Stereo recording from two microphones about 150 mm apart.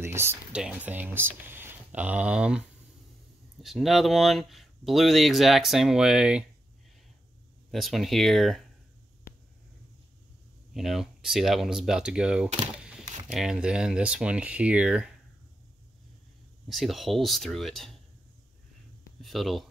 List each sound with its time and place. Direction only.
0.0 s speech: 15° right (ahead or behind)
3.6 s speech: centre (ahead or behind)
7.7 s speech: centre (ahead or behind)
10.7 s speech: centre (ahead or behind)
12.7 s camera: 5° right (ahead or behind)
13.3 s speech: 5° right (ahead or behind)
16.6 s speech: centre (ahead or behind)
19.2 s speech: centre (ahead or behind)